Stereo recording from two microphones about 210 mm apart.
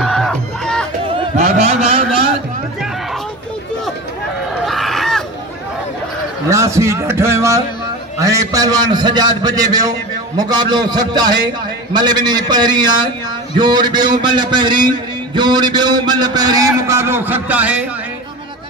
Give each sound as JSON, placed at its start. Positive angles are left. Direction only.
{"t": 0.0, "sound": "music", "side_deg": 0}
{"t": 1.1, "sound": "a sound", "side_deg": -30}
{"t": 4.6, "sound": "fowl", "side_deg": 0}
{"t": 6.5, "sound": "a man's voice", "side_deg": -15}